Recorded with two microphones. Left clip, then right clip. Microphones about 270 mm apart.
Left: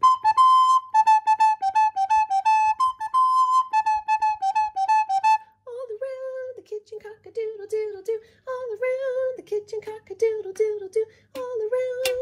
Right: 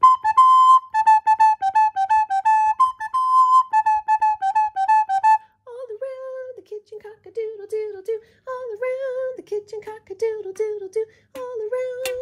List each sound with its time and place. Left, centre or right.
0.2 s music: right
10.6 s a sound: right
11.4 s child singing: right